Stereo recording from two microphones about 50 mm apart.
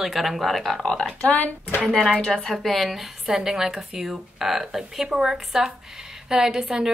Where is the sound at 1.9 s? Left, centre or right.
Centre.